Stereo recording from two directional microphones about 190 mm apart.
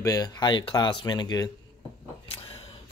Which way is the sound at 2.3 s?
30° left (ahead or behind).